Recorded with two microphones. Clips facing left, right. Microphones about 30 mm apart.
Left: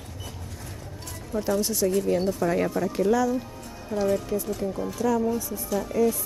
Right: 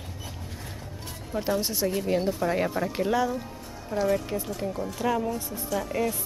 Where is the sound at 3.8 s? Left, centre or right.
Centre.